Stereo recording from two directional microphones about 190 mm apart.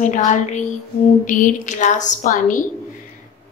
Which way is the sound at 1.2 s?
40° left (ahead or behind).